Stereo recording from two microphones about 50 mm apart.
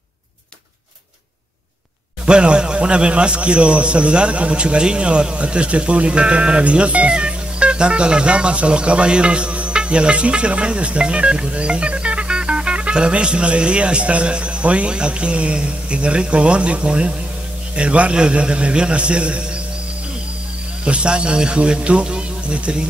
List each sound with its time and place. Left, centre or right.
2.2 s a man's voice: centre
20.8 s speech: right